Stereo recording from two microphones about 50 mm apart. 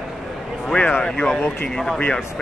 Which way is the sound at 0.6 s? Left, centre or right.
Centre.